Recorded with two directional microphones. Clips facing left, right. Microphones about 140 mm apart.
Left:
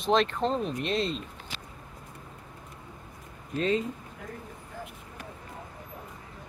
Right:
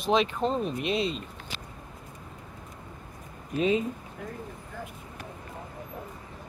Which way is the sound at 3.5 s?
15° right (ahead or behind).